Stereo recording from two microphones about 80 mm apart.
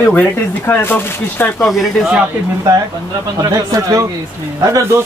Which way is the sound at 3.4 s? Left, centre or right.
Right.